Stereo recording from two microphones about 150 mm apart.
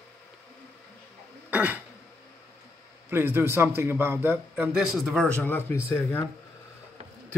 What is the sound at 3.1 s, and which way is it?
A man's voice, 15° right (ahead or behind).